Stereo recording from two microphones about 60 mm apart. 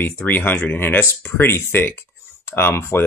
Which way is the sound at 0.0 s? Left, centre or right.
Left.